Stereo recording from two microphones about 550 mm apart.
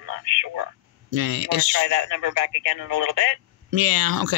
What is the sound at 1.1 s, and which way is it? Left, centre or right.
Speech, right.